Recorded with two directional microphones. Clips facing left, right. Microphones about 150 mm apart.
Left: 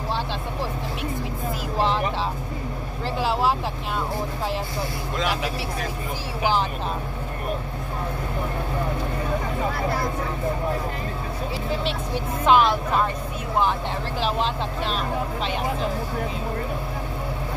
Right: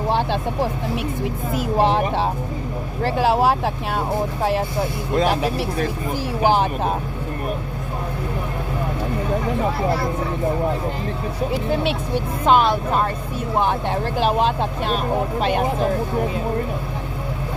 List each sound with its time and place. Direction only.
0.1 s speech: 55° right (ahead or behind)
1.8 s speech: 55° right (ahead or behind)
5.2 s speech: 45° right (ahead or behind)
11.5 s speech: 55° right (ahead or behind)
12.4 s speech: 40° right (ahead or behind)